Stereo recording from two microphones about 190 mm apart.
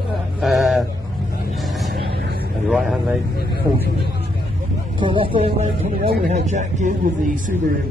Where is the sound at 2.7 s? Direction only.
5° right (ahead or behind).